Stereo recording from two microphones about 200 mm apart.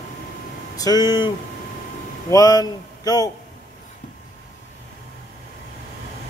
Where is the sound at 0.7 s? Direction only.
20° left (ahead or behind).